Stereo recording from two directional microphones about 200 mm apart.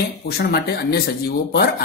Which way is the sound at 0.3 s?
55° left (ahead or behind).